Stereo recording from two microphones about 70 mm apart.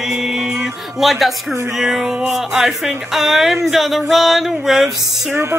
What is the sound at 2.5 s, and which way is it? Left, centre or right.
Speech, centre.